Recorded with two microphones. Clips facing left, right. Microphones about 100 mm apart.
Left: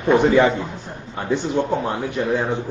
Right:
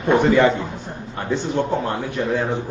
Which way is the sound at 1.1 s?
15° left (ahead or behind).